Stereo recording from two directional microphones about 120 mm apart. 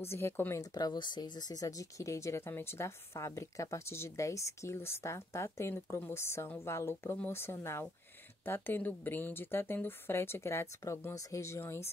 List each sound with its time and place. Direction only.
0.1 s speech: 20° left (ahead or behind)
0.7 s speech: 35° left (ahead or behind)